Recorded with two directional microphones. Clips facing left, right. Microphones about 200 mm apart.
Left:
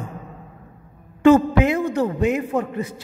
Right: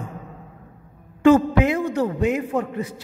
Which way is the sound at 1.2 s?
25° left (ahead or behind).